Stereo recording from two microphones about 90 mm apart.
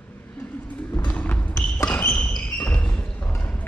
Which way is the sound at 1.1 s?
15° left (ahead or behind).